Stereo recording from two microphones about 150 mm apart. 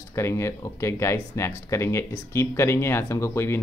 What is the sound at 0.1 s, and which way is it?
Speech, 20° left (ahead or behind).